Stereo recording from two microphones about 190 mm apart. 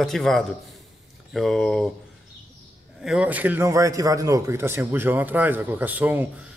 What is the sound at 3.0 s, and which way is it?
A man's voice, 5° right (ahead or behind).